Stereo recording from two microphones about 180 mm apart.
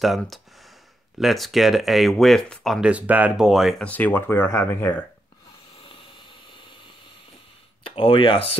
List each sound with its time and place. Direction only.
0.0 s speech: centre (ahead or behind)
7.8 s speech: 30° left (ahead or behind)